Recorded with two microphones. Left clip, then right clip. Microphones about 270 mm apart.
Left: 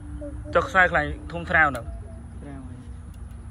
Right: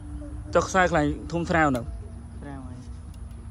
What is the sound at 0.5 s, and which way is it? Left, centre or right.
Speech, centre.